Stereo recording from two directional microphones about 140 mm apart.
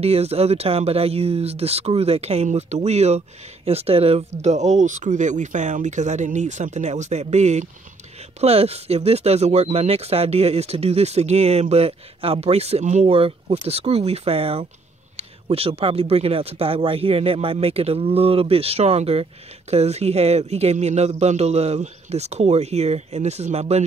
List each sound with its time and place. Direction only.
0.0 s speech: 45° right (ahead or behind)